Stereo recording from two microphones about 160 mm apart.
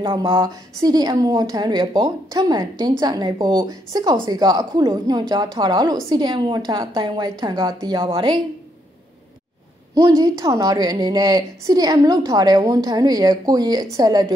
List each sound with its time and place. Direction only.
0.0 s a woman's voice: 30° right (ahead or behind)
9.9 s a woman's voice: 20° right (ahead or behind)